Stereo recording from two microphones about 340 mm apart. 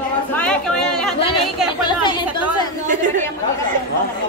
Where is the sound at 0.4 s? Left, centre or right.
Centre.